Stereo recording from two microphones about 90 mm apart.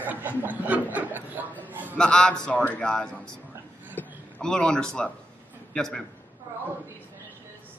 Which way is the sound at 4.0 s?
20° left (ahead or behind).